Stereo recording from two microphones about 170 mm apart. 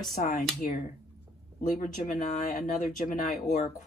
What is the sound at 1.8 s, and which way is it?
A woman's voice, 50° left (ahead or behind).